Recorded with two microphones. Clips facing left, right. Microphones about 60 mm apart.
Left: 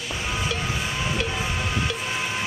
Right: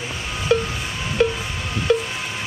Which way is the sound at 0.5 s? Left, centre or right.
Right.